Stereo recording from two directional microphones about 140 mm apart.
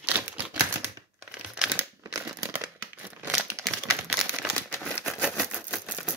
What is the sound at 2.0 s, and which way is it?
Crumpling, 25° right (ahead or behind).